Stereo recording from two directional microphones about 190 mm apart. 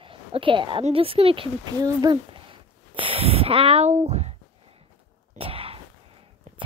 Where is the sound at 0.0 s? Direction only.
25° right (ahead or behind).